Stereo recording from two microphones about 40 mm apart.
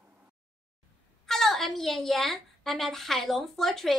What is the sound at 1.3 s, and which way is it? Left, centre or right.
A woman's voice, centre.